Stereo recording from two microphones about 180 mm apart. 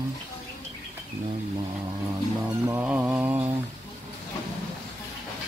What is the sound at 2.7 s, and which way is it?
Speech, 10° right (ahead or behind).